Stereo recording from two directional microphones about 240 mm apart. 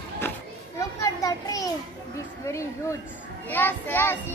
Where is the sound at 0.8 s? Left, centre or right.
Centre.